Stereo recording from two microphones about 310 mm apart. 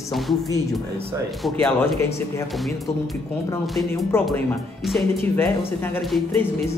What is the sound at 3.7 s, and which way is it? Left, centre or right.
Speech, centre.